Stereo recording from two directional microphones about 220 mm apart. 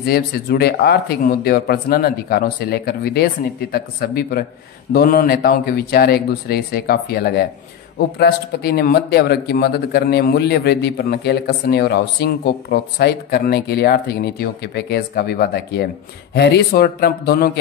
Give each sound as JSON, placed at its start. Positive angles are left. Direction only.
{"t": 0.0, "sound": "speech", "side_deg": 45}